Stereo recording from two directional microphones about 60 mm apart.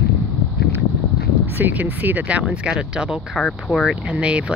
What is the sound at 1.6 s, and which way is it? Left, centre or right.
Speech, right.